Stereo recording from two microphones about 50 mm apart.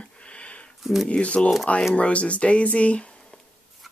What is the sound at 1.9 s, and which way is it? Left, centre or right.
Speech, left.